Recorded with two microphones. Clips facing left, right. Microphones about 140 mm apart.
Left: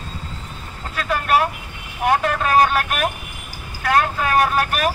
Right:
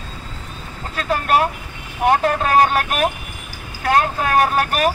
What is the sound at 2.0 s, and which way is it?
Speech, 35° right (ahead or behind).